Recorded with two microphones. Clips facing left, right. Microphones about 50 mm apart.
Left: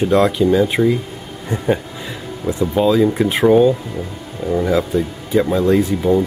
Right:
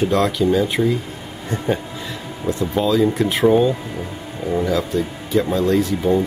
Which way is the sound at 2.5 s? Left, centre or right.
Centre.